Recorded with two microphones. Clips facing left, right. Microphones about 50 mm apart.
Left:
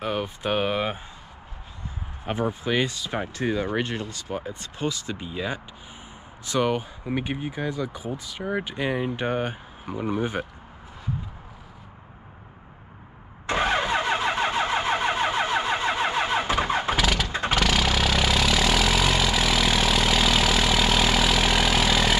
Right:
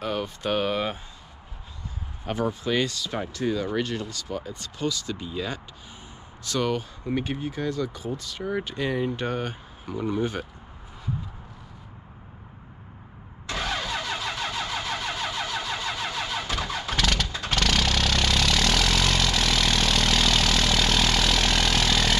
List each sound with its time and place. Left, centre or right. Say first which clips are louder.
0.0 s speech: left 1 dB; centre
2.2 s speech: even; left
13.5 s vehicle: left 6 dB; left
16.9 s vehicle: left 2 dB; centre